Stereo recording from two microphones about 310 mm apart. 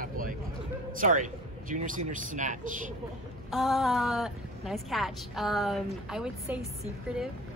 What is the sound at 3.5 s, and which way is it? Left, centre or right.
A woman's voice, centre.